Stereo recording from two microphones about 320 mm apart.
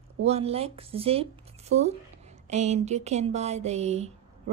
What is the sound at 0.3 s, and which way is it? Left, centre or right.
Speech, centre.